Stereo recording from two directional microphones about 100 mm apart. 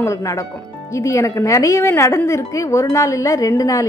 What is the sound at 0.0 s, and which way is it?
A woman's voice, 30° left (ahead or behind).